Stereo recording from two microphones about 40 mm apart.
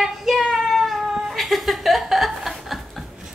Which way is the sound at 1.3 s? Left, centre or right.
Centre.